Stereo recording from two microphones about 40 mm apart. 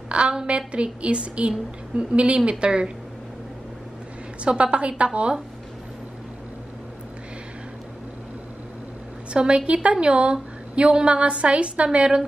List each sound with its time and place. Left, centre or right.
0.1 s a woman's voice: right
4.5 s a woman's voice: right
9.3 s a woman's voice: right